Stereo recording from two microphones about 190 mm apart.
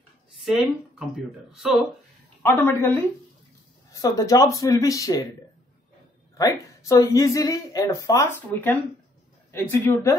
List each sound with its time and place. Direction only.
0.4 s speech: centre (ahead or behind)
2.4 s a woman's voice: 10° left (ahead or behind)
6.3 s a woman's voice: 20° left (ahead or behind)